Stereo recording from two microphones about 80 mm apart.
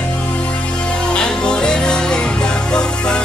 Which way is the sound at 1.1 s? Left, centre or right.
Centre.